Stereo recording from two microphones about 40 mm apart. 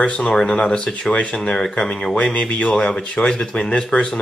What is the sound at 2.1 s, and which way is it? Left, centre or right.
Speech, left.